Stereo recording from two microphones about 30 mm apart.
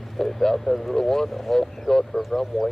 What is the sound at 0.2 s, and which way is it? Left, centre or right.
Speech, centre.